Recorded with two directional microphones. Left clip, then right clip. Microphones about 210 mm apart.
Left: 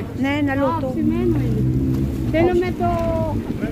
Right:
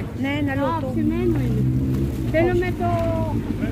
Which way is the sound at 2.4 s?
40° left (ahead or behind).